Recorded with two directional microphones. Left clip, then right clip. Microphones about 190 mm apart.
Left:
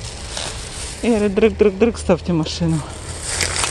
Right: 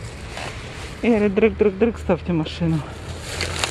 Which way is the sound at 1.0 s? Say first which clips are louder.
Left 2 dB; 15° left (ahead or behind).